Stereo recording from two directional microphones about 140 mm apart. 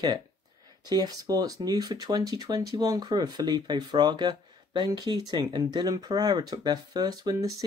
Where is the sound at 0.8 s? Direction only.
30° right (ahead or behind).